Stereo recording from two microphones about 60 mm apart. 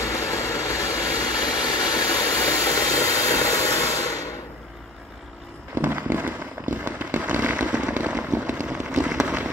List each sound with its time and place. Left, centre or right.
0.0 s vehicle: left
5.8 s a sound: right
6.8 s fireworks: right
8.6 s firecracker: right
9.0 s fireworks: centre